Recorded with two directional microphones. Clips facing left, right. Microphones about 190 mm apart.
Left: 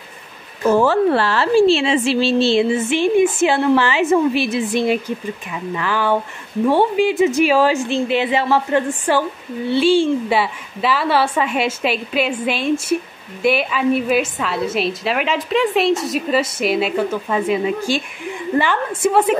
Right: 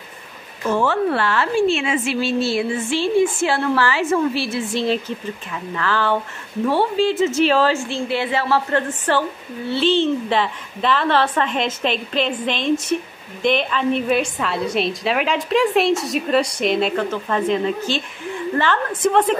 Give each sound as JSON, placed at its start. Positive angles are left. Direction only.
{"t": 0.7, "sound": "a woman's voice", "side_deg": 40}